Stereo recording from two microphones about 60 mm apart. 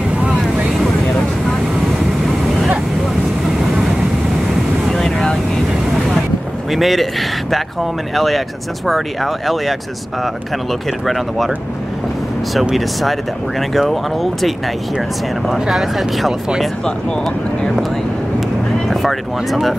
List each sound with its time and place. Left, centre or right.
0.2 s boat: right
4.8 s boat: centre
6.7 s speech: centre
12.7 s speech: centre
16.8 s speech: centre
18.9 s speech: centre